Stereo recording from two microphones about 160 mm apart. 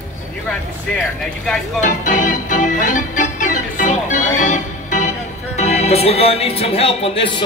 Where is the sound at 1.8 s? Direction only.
50° left (ahead or behind).